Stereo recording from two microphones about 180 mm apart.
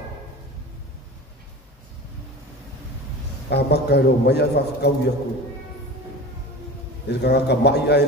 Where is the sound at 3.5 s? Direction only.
65° left (ahead or behind).